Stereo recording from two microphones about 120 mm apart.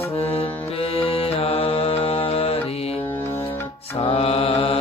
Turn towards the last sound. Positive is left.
turn(degrees=50)  # may be behind; listen again after turning